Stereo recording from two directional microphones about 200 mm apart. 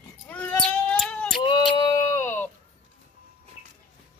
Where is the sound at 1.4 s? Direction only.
20° left (ahead or behind).